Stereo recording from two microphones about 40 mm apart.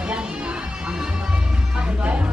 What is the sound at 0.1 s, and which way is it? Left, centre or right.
Music, right.